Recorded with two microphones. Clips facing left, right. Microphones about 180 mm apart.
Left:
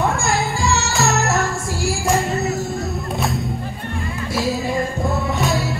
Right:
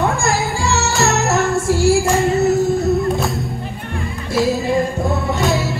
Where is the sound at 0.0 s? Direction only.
Centre (ahead or behind).